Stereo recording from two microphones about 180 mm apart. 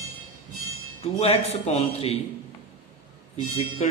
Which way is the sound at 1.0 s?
35° left (ahead or behind).